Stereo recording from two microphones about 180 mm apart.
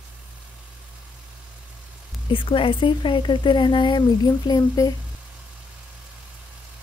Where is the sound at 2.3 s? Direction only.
30° left (ahead or behind).